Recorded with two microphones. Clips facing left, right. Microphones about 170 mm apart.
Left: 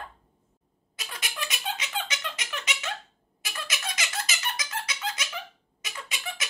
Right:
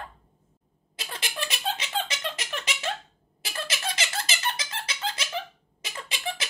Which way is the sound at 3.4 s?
30° right (ahead or behind).